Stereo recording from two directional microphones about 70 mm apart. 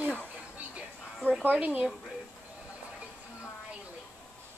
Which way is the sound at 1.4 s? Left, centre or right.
Right.